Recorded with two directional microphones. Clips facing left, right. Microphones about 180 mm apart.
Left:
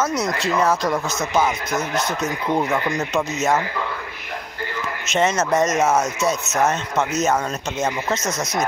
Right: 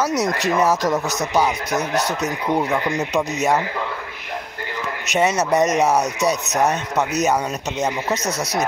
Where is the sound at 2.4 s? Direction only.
10° right (ahead or behind).